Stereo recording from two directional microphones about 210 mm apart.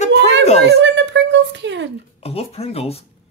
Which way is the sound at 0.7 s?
55° right (ahead or behind).